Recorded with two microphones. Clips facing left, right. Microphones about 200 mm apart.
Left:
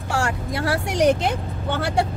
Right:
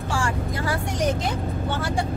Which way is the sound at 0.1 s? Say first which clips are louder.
Left 3 dB; 70° left (ahead or behind).